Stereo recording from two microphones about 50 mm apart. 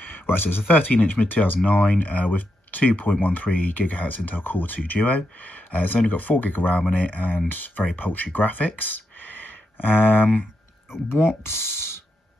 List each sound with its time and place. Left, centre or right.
0.0 s speech: left
11.1 s speech: left